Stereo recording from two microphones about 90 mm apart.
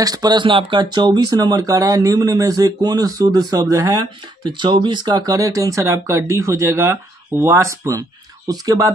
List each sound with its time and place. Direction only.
0.0 s speech: 45° right (ahead or behind)
4.5 s speech: 55° right (ahead or behind); by 8.9 s 40° right (ahead or behind)